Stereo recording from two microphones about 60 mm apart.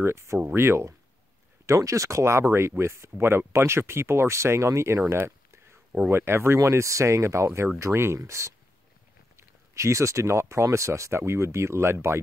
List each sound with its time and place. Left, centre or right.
0.0 s speech: right
1.7 s speech: right